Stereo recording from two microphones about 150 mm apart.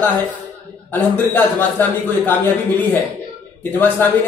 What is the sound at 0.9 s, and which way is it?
A man's voice, 10° left (ahead or behind).